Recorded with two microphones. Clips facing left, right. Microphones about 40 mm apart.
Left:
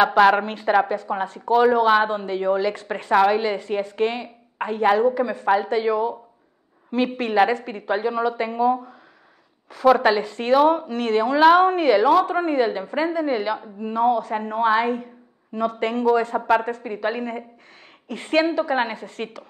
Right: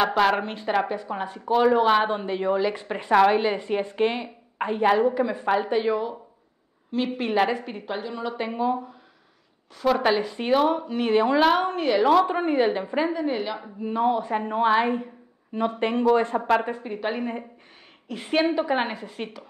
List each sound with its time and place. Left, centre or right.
0.0 s a woman's voice: centre
1.2 s a woman's voice: centre
1.5 s a woman's voice: centre
2.0 s a woman's voice: centre
3.1 s a woman's voice: centre
3.3 s a woman's voice: centre
7.9 s speech: centre
8.3 s a woman's voice: centre
9.7 s a woman's voice: centre
11.3 s a woman's voice: centre
12.4 s a woman's voice: centre
16.3 s a woman's voice: centre
18.5 s speech: centre
18.8 s a woman's voice: centre